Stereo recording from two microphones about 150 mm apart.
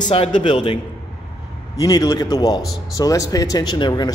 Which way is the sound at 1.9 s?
25° left (ahead or behind).